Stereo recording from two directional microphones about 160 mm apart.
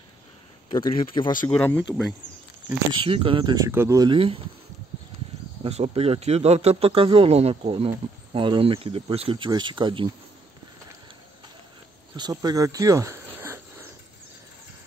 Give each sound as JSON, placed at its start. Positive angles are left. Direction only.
{"t": 0.7, "sound": "speech", "side_deg": 30}
{"t": 1.5, "sound": "speech", "side_deg": 10}
{"t": 2.9, "sound": "speech", "side_deg": -35}
{"t": 4.1, "sound": "a man's voice", "side_deg": -35}
{"t": 5.6, "sound": "a man's voice", "side_deg": -40}
{"t": 12.2, "sound": "speech", "side_deg": -25}